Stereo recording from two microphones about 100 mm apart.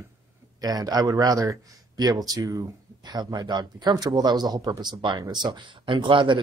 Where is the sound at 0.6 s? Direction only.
40° right (ahead or behind).